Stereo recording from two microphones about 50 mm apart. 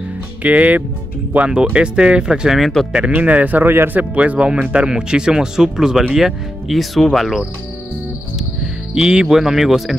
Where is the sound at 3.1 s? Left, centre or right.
Right.